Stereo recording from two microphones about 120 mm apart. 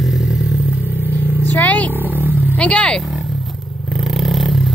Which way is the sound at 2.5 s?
10° left (ahead or behind).